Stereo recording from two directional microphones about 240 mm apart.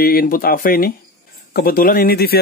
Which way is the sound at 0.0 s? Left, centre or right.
Left.